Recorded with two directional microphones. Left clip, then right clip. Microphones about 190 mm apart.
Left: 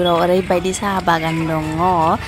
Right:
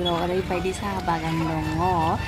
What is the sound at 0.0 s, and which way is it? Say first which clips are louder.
Speech: left 10 dB; 45° left (ahead or behind).